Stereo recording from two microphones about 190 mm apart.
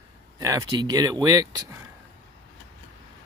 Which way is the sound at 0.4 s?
20° right (ahead or behind).